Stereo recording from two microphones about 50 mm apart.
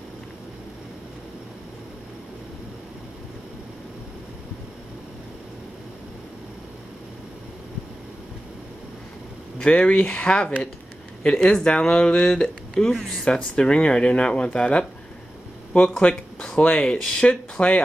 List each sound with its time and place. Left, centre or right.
9.6 s speech: left
16.0 s speech: left